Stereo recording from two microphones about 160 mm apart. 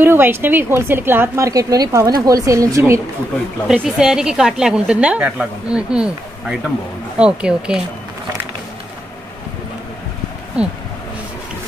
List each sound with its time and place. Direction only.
0.0 s a woman's voice: 15° right (ahead or behind)
3.6 s a woman's voice: 5° right (ahead or behind)
10.6 s a woman's voice: 5° right (ahead or behind)